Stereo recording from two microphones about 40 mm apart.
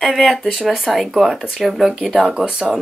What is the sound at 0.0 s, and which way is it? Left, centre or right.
Speech, centre.